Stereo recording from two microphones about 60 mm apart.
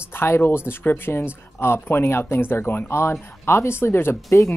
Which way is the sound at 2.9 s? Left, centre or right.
Left.